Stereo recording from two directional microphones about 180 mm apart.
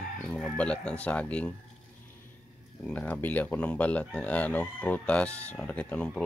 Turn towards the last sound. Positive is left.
turn(degrees=5)  # may be behind; listen again after turning